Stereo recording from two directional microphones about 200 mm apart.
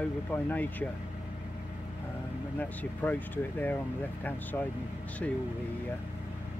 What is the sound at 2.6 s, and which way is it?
Speech, 10° left (ahead or behind).